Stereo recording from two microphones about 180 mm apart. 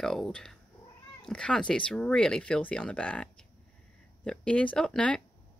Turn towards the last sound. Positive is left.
turn(degrees=5)  # may be behind; listen again after turning